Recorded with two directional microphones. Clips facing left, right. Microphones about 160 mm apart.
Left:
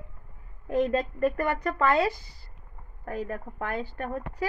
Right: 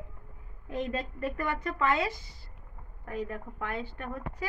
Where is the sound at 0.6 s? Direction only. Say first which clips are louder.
Left 8 dB; 40° left (ahead or behind).